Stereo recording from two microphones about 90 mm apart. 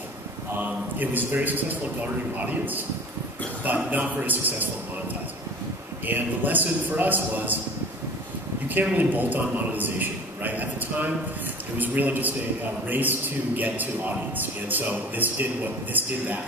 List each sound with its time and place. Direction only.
0.6 s a man's voice: 20° right (ahead or behind)
6.0 s a man's voice: 20° right (ahead or behind)
8.6 s a man's voice: 20° right (ahead or behind)